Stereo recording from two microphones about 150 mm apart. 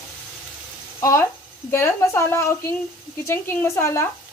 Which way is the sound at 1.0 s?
20° left (ahead or behind).